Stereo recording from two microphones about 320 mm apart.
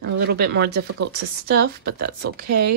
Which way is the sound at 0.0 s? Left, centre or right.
Right.